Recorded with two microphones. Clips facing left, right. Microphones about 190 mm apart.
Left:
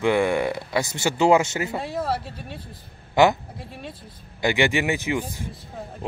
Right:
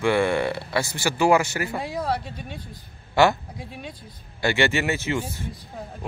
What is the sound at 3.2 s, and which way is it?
Speech, 20° left (ahead or behind).